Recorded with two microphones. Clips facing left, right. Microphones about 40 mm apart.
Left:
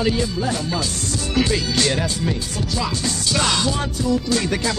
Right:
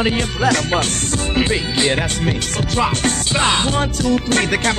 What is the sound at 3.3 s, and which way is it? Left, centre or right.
Music, right.